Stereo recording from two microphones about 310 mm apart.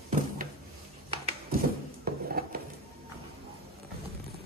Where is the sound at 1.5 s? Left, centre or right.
Right.